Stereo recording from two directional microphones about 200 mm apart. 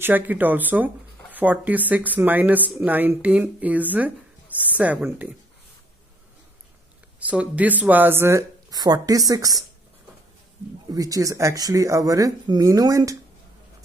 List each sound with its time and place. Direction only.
0.0 s speech: 10° right (ahead or behind)
7.2 s speech: 5° right (ahead or behind)
10.9 s speech: 15° right (ahead or behind)